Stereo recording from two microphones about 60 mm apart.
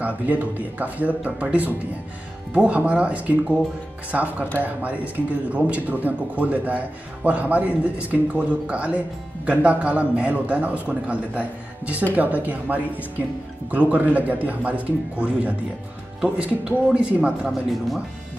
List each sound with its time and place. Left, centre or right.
0.0 s a man's voice: right
17.5 s speech: centre